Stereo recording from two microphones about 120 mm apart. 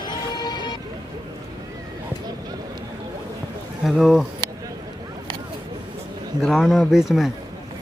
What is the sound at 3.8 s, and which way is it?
Speech, 5° right (ahead or behind).